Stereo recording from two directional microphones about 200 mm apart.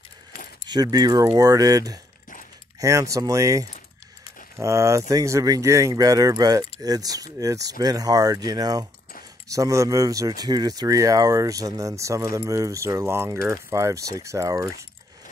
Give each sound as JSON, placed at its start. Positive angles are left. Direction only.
{"t": 0.7, "sound": "speech", "side_deg": -20}